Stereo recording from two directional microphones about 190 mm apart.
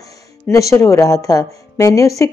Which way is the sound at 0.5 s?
15° left (ahead or behind).